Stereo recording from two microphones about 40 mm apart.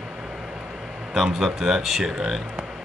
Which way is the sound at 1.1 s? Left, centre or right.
Centre.